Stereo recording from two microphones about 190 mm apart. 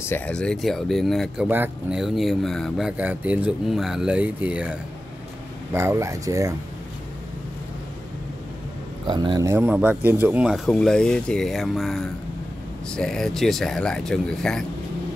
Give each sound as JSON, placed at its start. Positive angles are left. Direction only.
{"t": 0.0, "sound": "speech", "side_deg": 10}
{"t": 9.0, "sound": "speech", "side_deg": -25}